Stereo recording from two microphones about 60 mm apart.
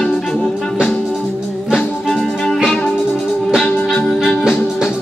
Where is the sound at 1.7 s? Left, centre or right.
Centre.